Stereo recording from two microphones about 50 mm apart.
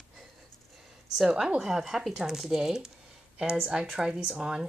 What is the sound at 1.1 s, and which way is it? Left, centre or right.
Speech, centre.